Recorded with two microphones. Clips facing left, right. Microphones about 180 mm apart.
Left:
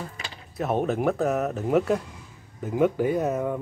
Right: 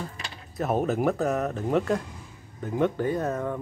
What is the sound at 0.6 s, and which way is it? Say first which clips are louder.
Speech: even; centre (ahead or behind).